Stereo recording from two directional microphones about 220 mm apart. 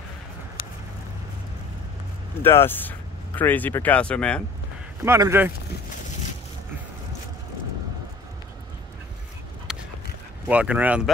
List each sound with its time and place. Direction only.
2.4 s speech: 10° left (ahead or behind)
5.0 s speech: 10° right (ahead or behind)
9.7 s dog: 5° right (ahead or behind)
10.4 s speech: 5° right (ahead or behind)